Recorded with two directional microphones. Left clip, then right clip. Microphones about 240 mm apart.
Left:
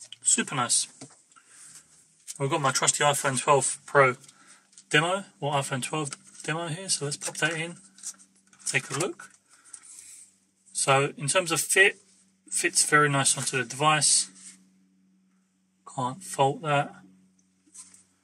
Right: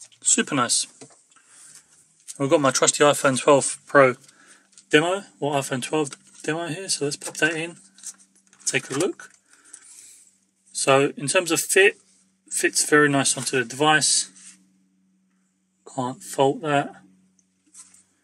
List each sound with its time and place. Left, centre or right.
0.4 s speech: right
2.3 s speech: right
10.8 s speech: right
15.9 s speech: right